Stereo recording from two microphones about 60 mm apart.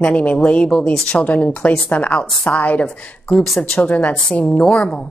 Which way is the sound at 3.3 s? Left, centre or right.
Centre.